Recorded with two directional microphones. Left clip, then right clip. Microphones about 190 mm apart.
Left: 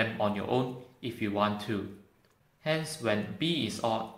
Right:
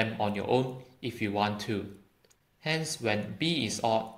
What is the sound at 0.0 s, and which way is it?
Speech, 35° right (ahead or behind).